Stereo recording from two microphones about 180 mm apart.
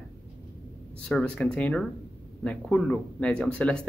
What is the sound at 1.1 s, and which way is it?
A man's voice, 5° left (ahead or behind).